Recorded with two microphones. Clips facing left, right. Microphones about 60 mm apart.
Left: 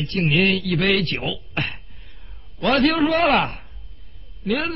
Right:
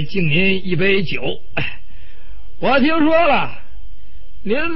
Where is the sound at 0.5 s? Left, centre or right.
Right.